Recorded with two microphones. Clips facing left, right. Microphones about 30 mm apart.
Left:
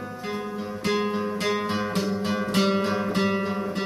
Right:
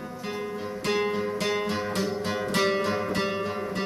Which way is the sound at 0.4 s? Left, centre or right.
Centre.